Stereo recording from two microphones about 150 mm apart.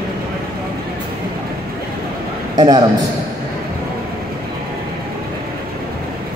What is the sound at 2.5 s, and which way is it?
Speech, 25° right (ahead or behind).